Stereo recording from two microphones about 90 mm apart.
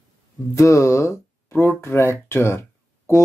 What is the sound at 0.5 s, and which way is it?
Speech, 35° left (ahead or behind).